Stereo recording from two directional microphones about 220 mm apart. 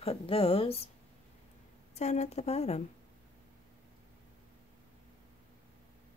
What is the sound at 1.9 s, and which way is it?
Speech, 30° left (ahead or behind).